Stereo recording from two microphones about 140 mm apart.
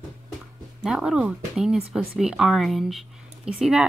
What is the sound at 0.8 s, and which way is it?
Speech, 5° right (ahead or behind).